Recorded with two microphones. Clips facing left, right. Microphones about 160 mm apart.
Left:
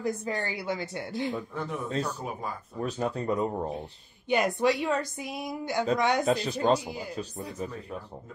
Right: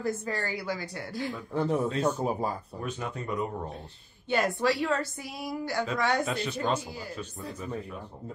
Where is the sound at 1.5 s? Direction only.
35° right (ahead or behind).